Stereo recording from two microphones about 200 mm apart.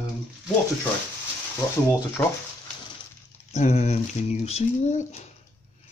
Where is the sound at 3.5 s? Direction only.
35° left (ahead or behind).